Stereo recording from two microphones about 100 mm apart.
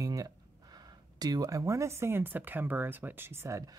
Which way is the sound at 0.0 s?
35° right (ahead or behind).